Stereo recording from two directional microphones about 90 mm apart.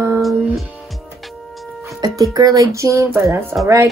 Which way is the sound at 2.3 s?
40° right (ahead or behind).